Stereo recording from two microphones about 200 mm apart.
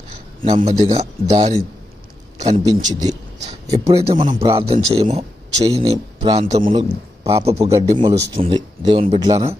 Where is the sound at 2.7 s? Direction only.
20° right (ahead or behind).